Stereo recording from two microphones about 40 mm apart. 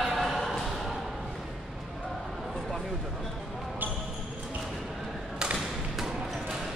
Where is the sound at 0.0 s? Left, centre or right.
Centre.